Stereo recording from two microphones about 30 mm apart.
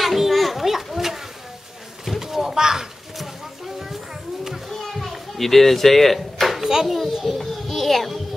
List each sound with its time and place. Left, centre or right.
0.0 s children playing: centre
2.1 s a sound: centre
3.2 s a sound: centre
4.6 s children playing: centre
4.9 s children playing: centre
5.4 s speech: centre
6.6 s a child's voice: centre
7.2 s children playing: centre